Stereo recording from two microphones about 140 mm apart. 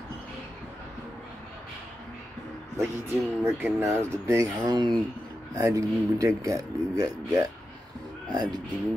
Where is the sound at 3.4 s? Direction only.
20° right (ahead or behind).